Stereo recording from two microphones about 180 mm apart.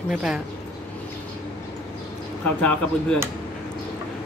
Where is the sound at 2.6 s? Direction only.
5° left (ahead or behind).